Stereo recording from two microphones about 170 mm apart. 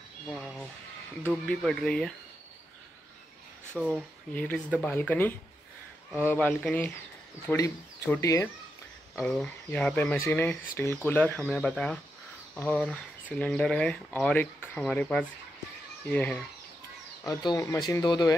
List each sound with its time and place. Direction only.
0.3 s speech: centre (ahead or behind)
3.8 s speech: 5° right (ahead or behind)
4.4 s speech: 10° left (ahead or behind)
9.2 s speech: 5° left (ahead or behind)
17.2 s speech: 25° left (ahead or behind)